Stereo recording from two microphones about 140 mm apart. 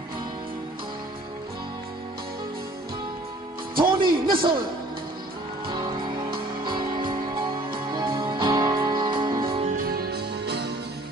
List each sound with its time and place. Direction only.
3.7 s speech: 35° right (ahead or behind)
6.3 s music: 35° right (ahead or behind)
9.7 s music: 90° right